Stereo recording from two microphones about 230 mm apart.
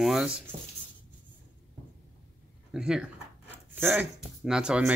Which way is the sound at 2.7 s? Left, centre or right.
Centre.